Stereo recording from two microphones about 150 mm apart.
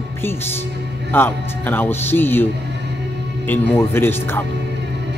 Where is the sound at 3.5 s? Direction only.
15° left (ahead or behind).